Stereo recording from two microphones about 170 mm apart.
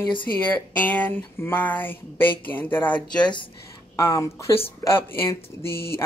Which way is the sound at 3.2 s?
30° left (ahead or behind).